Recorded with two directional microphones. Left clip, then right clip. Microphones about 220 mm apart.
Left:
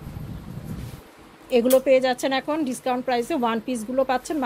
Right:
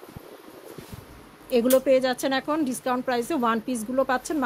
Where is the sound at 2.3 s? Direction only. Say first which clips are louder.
Left 1 dB; 15° right (ahead or behind).